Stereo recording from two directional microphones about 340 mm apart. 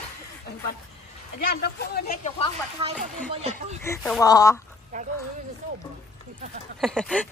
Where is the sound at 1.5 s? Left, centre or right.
Left.